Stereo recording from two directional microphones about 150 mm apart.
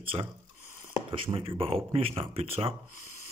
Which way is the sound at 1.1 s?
35° right (ahead or behind).